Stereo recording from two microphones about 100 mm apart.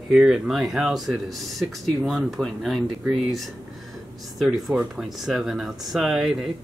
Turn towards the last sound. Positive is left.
turn(degrees=-5)  # may be behind; listen again after turning